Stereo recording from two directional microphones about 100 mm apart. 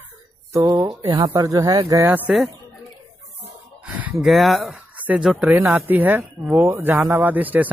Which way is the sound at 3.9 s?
15° right (ahead or behind).